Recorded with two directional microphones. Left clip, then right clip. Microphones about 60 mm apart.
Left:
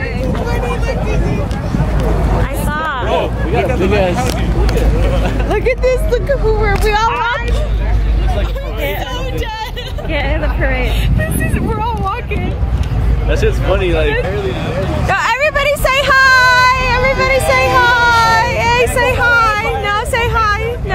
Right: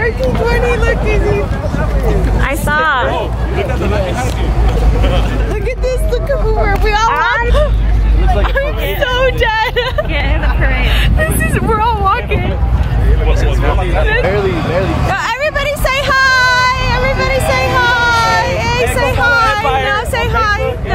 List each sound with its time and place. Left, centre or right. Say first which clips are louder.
0.2 s vehicle: right 6 dB; right
2.7 s a sound: right 7 dB; centre
5.5 s speech: left 6 dB; left
7.1 s speech: right 3 dB; right
9.1 s a sound: right 10 dB; right
11.7 s vehicle: right 8 dB; centre
14.2 s speech: right 5 dB; right
15.0 s a sound: left 2 dB; centre
19.8 s hubbub: right 1 dB; centre